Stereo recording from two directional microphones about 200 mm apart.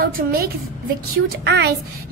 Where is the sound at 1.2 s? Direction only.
60° right (ahead or behind).